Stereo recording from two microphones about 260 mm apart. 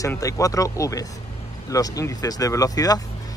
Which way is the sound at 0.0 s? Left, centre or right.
Centre.